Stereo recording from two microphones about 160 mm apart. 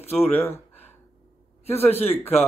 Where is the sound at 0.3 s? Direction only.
15° left (ahead or behind).